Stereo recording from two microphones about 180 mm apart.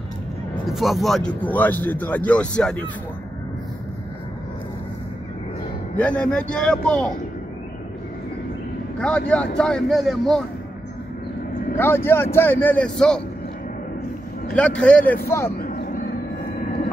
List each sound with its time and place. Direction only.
0.7 s speech: centre (ahead or behind)
5.9 s a man's voice: 5° left (ahead or behind)
9.0 s a man's voice: 5° left (ahead or behind)
11.7 s speech: 15° left (ahead or behind)
14.5 s speech: 5° left (ahead or behind)
15.6 s vehicle: 55° left (ahead or behind)